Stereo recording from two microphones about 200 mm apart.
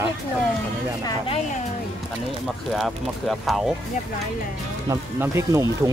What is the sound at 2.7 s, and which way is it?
Speech, centre (ahead or behind).